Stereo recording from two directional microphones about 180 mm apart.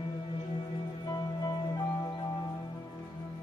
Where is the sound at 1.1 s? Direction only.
20° left (ahead or behind).